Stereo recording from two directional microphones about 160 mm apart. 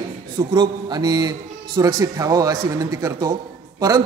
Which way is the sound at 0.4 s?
25° right (ahead or behind).